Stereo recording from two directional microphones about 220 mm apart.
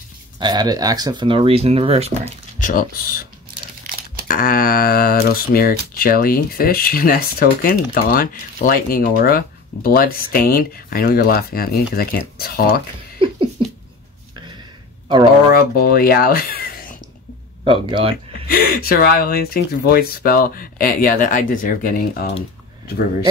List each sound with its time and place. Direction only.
0.4 s speech: 20° right (ahead or behind)
2.6 s speech: 40° left (ahead or behind)
4.3 s speech: 40° left (ahead or behind)
13.2 s a sound: 25° right (ahead or behind)
15.5 s speech: 45° left (ahead or behind)
17.6 s speech: 25° right (ahead or behind)
18.1 s speech: 40° left (ahead or behind)